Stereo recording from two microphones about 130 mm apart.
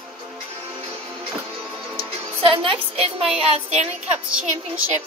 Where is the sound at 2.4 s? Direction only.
45° right (ahead or behind).